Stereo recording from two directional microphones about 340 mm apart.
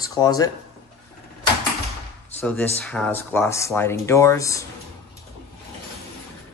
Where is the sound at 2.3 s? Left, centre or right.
Centre.